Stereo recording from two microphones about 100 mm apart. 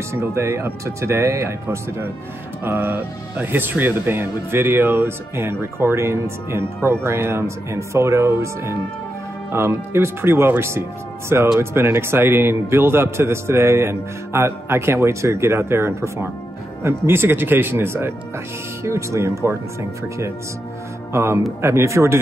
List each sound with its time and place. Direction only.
0.1 s a man's voice: 25° right (ahead or behind)
21.1 s a man's voice: 30° right (ahead or behind)